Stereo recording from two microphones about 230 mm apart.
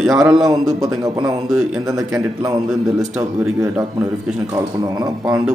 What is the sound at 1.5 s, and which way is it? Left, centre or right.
A man's voice, centre.